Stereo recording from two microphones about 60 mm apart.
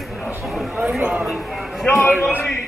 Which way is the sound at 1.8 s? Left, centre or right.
Left.